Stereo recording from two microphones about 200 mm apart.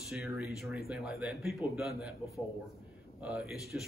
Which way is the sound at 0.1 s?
5° right (ahead or behind).